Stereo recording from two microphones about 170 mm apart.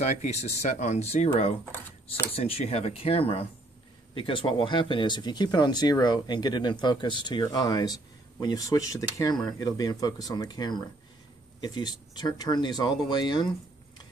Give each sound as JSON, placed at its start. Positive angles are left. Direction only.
{"t": 0.0, "sound": "speech", "side_deg": 40}